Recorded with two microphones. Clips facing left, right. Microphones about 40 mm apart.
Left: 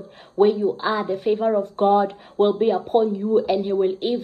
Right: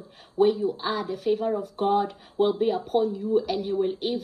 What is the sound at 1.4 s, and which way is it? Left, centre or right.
A woman's voice, left.